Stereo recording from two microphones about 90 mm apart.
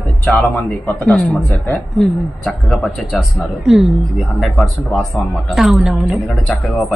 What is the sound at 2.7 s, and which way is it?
Speech, centre (ahead or behind).